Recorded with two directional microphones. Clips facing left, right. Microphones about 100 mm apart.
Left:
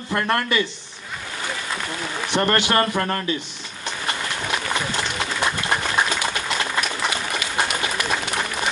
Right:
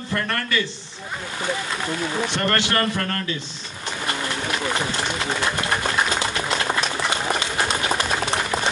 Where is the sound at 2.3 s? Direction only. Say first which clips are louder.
Left 7 dB; 20° left (ahead or behind).